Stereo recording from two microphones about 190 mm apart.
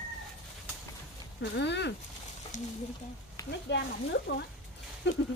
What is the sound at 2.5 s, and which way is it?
Speech, 40° left (ahead or behind).